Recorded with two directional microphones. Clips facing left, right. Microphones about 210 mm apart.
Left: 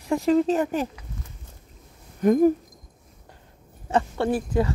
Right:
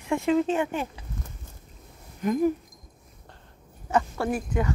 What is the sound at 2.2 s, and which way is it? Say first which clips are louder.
Speech: left 6 dB; 45° left (ahead or behind).